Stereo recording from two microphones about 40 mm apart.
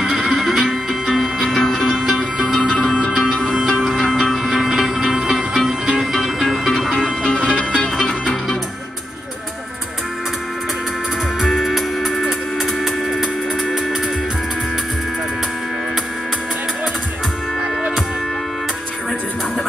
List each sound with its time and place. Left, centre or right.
0.0 s music: centre; by 3.5 s left
4.1 s music: centre
5.9 s music: centre
7.2 s music: left
11.5 s music: centre